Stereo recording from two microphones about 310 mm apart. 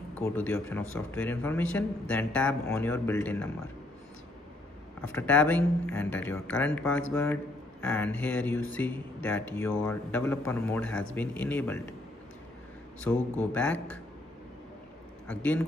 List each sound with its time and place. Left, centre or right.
0.1 s a man's voice: centre
5.0 s a man's voice: centre
13.0 s a man's voice: centre
15.2 s a man's voice: centre